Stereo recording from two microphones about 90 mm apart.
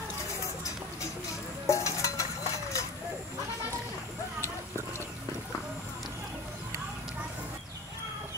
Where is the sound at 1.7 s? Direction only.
35° left (ahead or behind).